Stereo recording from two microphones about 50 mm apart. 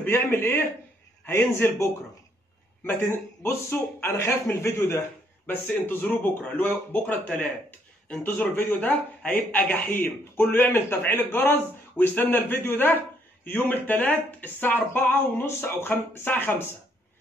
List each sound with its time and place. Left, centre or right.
0.0 s speech: left
1.5 s speech: left
2.8 s speech: left
5.5 s a man's voice: left
8.2 s a man's voice: left
15.4 s speech: left
16.3 s a man's voice: left